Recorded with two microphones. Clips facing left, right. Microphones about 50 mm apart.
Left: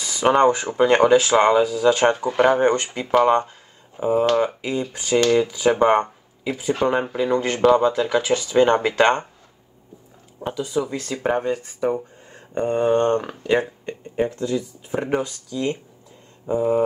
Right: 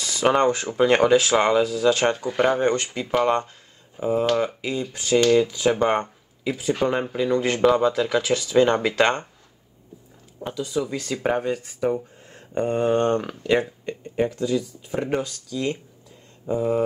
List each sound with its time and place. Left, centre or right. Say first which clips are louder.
0.0 s speech: left 3 dB; centre
0.7 s speech: left 1 dB; centre
1.1 s speech: left 3 dB; centre
5.9 s a sound: left 5 dB; centre
6.8 s speech: left 4 dB; centre
10.5 s speech: left 2 dB; centre
11.0 s speech: left 1 dB; centre
11.4 s speech: left 1 dB; centre
12.9 s speech: left 2 dB; centre
13.3 s speech: left 1 dB; centre